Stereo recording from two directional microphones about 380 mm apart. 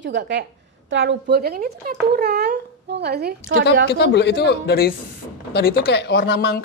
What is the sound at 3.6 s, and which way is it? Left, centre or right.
Speech, left.